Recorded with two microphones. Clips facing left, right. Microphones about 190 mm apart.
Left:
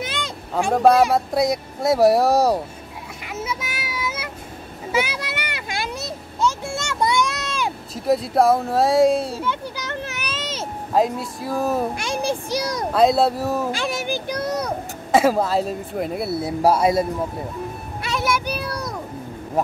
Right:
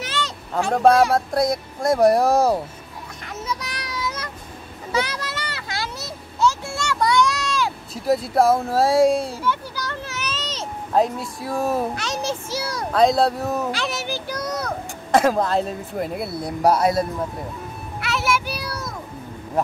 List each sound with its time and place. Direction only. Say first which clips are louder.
0.0 s vehicle: even; 10° left (ahead or behind)
0.7 s speech: even; centre (ahead or behind)
3.3 s child singing: left 1 dB; 5° left (ahead or behind)
4.9 s children playing: left 1 dB; 10° left (ahead or behind)
7.9 s speech: left 1 dB; centre (ahead or behind)
9.4 s a sound: right 1 dB; 20° left (ahead or behind); by 11.9 s centre (ahead or behind)
11.9 s a child's voice: left 2 dB; 10° left (ahead or behind)
12.9 s speech: even; 5° left (ahead or behind)
13.7 s a child's voice: left 2 dB; 15° left (ahead or behind)
15.0 s speech: left 1 dB; 5° left (ahead or behind)